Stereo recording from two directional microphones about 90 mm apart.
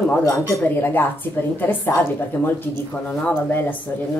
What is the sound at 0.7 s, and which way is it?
A woman's voice, 20° left (ahead or behind).